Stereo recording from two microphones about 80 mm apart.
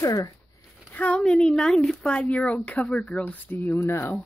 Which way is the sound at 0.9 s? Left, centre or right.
Centre.